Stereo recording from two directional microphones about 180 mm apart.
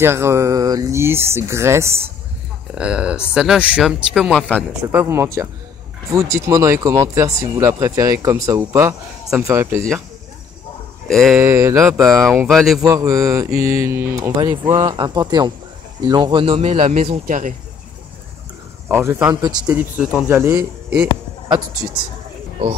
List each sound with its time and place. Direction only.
0.0 s speech: 15° right (ahead or behind); by 4.6 s 5° left (ahead or behind)
4.9 s speech: 15° right (ahead or behind)
11.1 s speech: centre (ahead or behind)
11.3 s speech: 15° right (ahead or behind)
12.4 s speech: centre (ahead or behind)
12.8 s speech: 20° right (ahead or behind); by 17.6 s 45° right (ahead or behind)
18.9 s speech: 10° right (ahead or behind)